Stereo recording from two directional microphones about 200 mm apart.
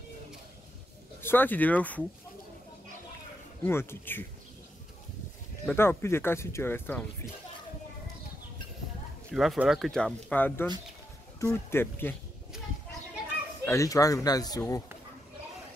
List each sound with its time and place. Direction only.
1.2 s speech: 10° left (ahead or behind)
3.6 s speech: 10° left (ahead or behind)
5.7 s speech: 10° left (ahead or behind)
9.3 s speech: centre (ahead or behind)
13.7 s speech: 15° left (ahead or behind)